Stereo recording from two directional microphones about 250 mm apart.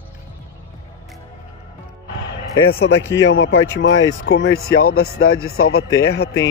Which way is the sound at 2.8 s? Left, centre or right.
Left.